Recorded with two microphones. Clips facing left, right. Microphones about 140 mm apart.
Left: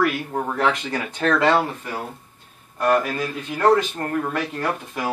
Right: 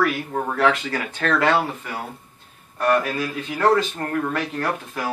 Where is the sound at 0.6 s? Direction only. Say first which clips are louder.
Right 3 dB; 20° left (ahead or behind).